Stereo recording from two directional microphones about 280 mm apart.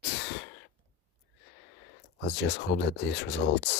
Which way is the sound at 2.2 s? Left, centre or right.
Left.